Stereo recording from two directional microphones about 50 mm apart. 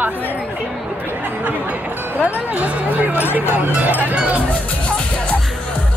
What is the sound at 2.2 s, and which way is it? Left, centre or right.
Speech, right.